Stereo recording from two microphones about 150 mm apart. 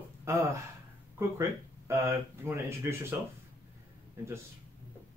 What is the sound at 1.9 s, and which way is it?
Speech, 15° right (ahead or behind).